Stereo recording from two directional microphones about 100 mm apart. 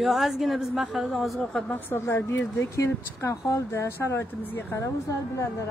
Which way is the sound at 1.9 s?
25° left (ahead or behind).